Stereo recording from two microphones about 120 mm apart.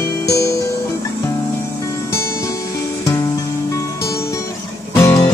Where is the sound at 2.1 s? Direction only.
25° left (ahead or behind).